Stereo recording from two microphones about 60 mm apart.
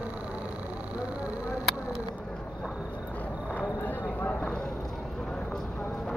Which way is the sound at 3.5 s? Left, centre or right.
Left.